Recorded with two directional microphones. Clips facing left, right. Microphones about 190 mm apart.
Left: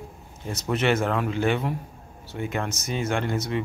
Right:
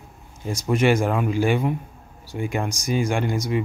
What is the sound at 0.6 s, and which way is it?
Speech, 10° right (ahead or behind).